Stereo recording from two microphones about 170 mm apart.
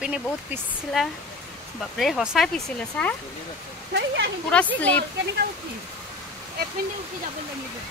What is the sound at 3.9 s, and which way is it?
Speech, 90° right.